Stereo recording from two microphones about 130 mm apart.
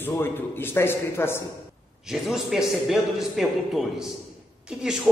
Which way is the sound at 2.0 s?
Centre (ahead or behind).